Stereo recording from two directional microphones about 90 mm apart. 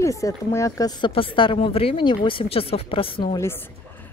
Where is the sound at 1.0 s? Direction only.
75° left (ahead or behind).